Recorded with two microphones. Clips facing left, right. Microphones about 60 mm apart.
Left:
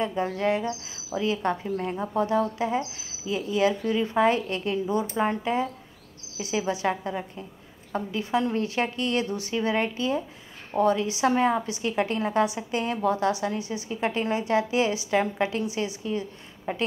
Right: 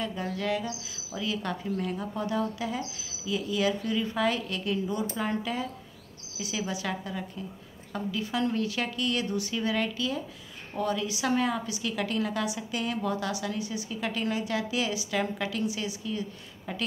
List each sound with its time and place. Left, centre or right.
0.0 s a woman's voice: left